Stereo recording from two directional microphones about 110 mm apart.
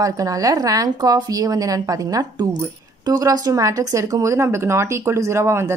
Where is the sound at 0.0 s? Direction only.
30° right (ahead or behind).